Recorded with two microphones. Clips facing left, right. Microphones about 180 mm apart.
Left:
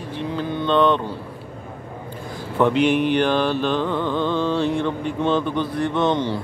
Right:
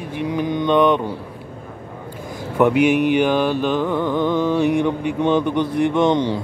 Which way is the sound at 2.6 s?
10° right (ahead or behind).